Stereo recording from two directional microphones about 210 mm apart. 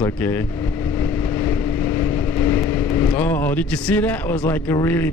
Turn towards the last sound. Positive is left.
turn(degrees=10)  # may be behind; listen again after turning